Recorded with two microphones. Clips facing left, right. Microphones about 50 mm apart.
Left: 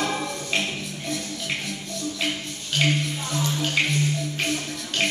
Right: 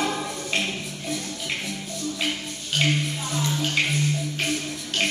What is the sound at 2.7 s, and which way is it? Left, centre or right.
Music, centre.